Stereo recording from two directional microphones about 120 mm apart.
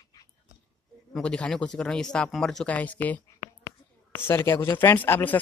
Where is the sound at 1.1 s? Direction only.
10° left (ahead or behind).